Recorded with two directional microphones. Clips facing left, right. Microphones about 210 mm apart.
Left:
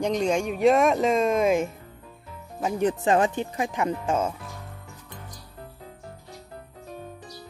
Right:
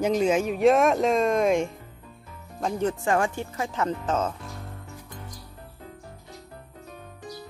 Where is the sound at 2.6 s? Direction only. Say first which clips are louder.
Left 2 dB; 15° left (ahead or behind).